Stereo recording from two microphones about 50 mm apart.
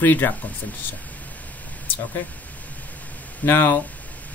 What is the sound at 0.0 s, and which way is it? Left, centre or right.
Speech, left.